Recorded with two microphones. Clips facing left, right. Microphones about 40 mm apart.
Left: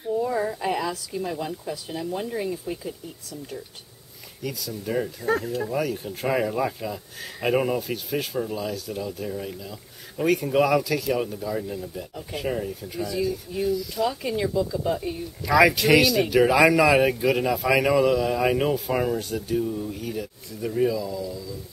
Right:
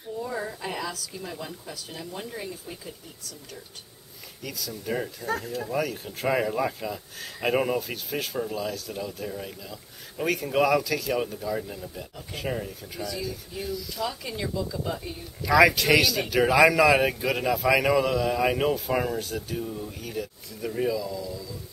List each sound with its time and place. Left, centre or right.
0.2 s a sound: centre
1.1 s speech: centre
4.4 s speech: centre